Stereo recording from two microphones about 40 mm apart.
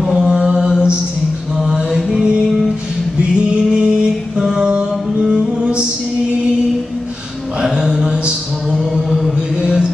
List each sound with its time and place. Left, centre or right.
0.2 s mantra: centre
2.0 s music: centre
3.2 s music: right
5.2 s mantra: right
7.6 s mantra: centre
7.9 s a sound: right
8.7 s a sound: centre